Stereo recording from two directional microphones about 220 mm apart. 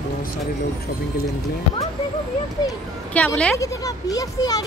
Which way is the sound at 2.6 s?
10° left (ahead or behind).